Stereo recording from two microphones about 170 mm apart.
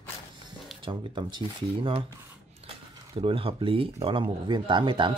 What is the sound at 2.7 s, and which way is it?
Speech, 30° right (ahead or behind).